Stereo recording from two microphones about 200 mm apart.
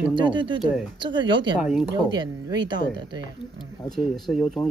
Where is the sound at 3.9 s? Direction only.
Centre (ahead or behind).